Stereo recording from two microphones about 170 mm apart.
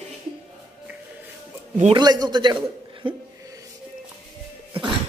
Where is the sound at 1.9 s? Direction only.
25° right (ahead or behind).